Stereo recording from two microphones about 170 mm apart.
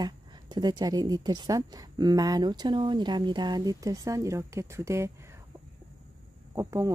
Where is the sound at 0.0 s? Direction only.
25° right (ahead or behind).